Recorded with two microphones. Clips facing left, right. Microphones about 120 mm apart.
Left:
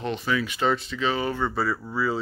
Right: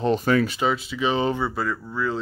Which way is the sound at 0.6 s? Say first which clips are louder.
Even; 5° right (ahead or behind).